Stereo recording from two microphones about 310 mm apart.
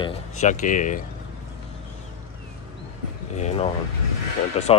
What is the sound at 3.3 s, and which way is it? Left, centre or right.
Speech, centre.